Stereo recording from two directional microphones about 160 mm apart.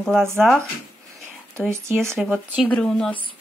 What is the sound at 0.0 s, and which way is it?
Speech, 5° left (ahead or behind).